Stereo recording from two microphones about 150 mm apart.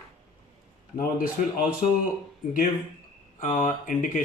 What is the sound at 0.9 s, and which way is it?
Speech, 65° left (ahead or behind).